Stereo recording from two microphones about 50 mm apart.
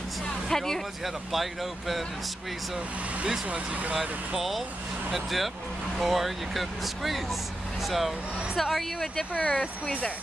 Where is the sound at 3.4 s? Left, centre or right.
Right.